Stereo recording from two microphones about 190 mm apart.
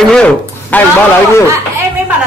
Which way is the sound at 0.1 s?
5° left (ahead or behind).